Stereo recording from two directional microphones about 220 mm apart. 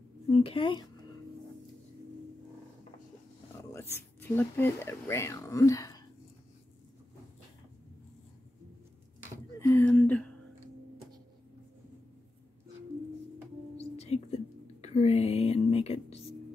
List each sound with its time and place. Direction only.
0.3 s speech: 25° left (ahead or behind)
3.7 s speech: 10° left (ahead or behind)
9.6 s a sound: 10° left (ahead or behind)
13.7 s whispering: 30° left (ahead or behind)